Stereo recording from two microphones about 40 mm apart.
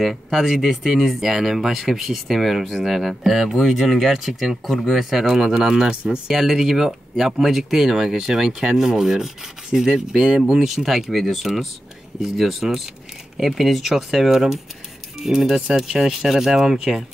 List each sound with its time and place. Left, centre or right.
0.0 s speech: centre
6.2 s speech: centre
10.1 s speech: right
10.5 s speech: centre